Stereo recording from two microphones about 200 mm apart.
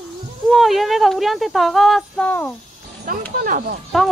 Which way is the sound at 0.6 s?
Centre (ahead or behind).